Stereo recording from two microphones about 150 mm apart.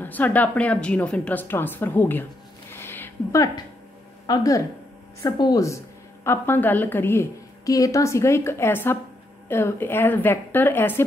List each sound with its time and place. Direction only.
0.0 s a woman's voice: 10° left (ahead or behind)
2.7 s a sound: 15° left (ahead or behind)
4.3 s a woman's voice: 25° left (ahead or behind)